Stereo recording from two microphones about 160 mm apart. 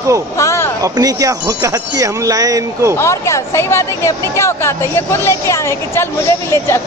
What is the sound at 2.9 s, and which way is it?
Speech, 20° left (ahead or behind).